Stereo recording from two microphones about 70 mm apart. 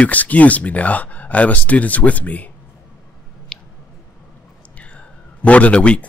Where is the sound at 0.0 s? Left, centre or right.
Left.